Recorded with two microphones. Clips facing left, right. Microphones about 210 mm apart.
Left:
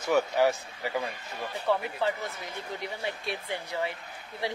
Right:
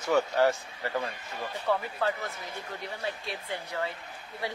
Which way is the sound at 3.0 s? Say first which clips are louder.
Left 1 dB; 20° left (ahead or behind).